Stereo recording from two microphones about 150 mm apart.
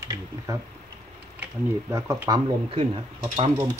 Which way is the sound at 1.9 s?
20° right (ahead or behind).